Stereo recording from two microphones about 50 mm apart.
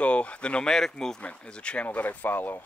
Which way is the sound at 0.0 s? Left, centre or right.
Left.